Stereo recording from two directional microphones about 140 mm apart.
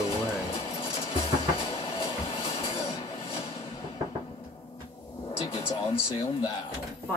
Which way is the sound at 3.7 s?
40° left (ahead or behind).